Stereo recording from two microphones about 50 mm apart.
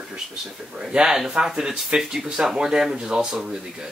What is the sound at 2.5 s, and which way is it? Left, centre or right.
Speech, centre.